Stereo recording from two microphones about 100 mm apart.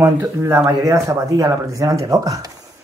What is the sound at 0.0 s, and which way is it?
Speech, 30° right (ahead or behind).